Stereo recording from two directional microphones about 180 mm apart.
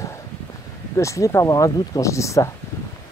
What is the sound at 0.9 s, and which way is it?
Speech, 15° left (ahead or behind).